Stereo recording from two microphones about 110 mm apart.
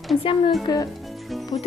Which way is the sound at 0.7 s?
40° left (ahead or behind).